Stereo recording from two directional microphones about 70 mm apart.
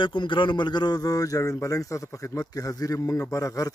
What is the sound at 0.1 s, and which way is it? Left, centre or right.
A man's voice, left.